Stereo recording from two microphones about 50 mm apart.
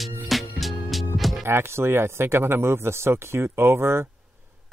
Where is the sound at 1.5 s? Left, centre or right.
Right.